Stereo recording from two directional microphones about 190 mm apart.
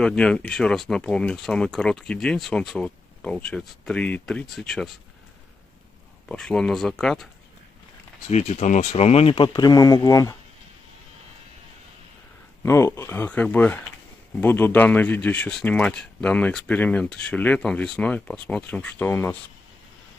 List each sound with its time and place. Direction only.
0.0 s speech: 5° left (ahead or behind)
6.2 s speech: 5° left (ahead or behind)
8.3 s speech: 35° left (ahead or behind); by 10.3 s 20° left (ahead or behind)
12.6 s speech: 15° left (ahead or behind)